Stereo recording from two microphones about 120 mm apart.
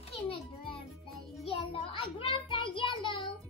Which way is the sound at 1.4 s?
50° left (ahead or behind).